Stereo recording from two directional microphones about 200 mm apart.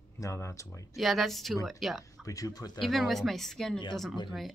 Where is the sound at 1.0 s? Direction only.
Centre (ahead or behind).